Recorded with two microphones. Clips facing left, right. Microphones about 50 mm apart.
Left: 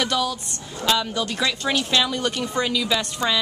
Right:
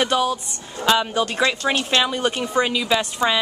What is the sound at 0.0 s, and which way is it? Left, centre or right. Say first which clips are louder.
A woman's voice: right 4 dB; right.